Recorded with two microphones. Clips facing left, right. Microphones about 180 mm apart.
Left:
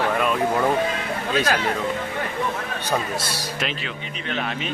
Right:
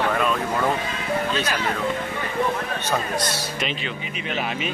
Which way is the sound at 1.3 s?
50° left (ahead or behind).